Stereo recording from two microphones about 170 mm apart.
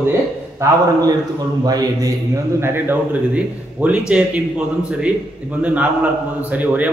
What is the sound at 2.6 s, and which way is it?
Speech, 10° right (ahead or behind).